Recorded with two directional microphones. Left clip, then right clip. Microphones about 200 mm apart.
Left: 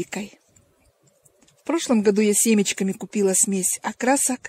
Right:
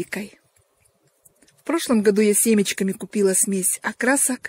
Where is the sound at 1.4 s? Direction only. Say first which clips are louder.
Right 1 dB; 5° right (ahead or behind).